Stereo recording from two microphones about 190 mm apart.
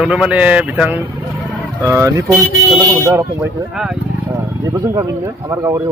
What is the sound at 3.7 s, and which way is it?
Speech, 5° right (ahead or behind).